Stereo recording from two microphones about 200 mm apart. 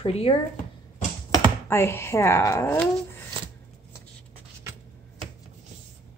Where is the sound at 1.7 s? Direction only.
10° left (ahead or behind).